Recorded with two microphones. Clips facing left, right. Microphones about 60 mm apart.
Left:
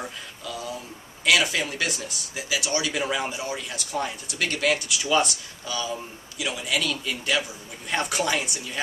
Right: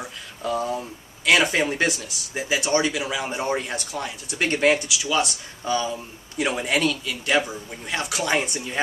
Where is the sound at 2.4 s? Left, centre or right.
Right.